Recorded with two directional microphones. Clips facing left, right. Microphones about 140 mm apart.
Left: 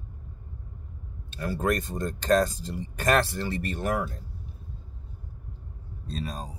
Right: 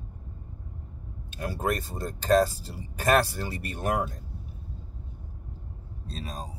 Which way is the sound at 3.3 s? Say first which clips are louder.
Left 4 dB; 10° right (ahead or behind).